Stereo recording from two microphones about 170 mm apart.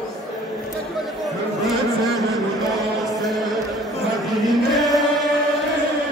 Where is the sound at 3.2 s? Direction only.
Centre (ahead or behind).